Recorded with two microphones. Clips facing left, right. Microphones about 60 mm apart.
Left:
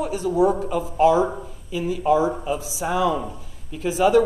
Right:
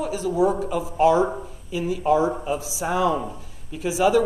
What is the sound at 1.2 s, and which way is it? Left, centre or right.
A man's voice, centre.